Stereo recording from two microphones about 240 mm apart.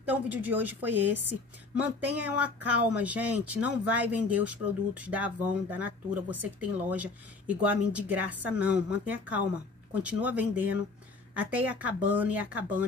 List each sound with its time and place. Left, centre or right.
0.0 s speech: centre